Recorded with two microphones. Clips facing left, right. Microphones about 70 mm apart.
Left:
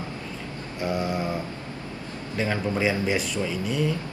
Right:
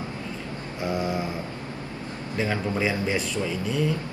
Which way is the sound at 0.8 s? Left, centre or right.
Centre.